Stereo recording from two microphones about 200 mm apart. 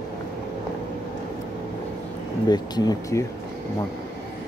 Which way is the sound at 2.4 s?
20° left (ahead or behind).